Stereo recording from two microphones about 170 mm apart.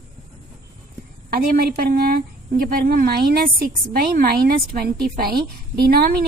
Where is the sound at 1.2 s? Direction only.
60° right (ahead or behind).